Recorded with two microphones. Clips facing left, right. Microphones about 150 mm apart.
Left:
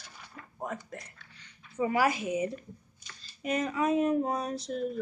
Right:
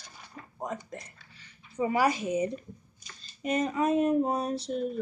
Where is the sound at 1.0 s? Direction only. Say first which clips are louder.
Right 1 dB; 10° right (ahead or behind).